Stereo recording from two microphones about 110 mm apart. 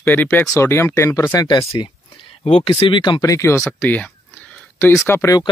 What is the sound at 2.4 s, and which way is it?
Speech, 65° left (ahead or behind).